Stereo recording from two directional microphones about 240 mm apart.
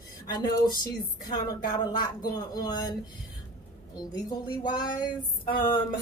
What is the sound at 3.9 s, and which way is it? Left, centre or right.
Speech, centre.